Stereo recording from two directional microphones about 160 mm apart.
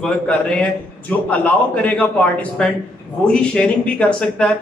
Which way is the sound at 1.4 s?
10° left (ahead or behind).